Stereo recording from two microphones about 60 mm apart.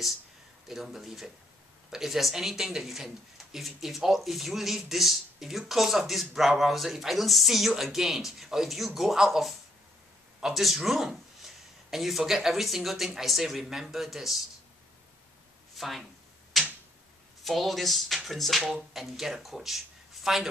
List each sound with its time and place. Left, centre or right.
0.7 s speech: centre
15.7 s a sound: centre
17.4 s speech: centre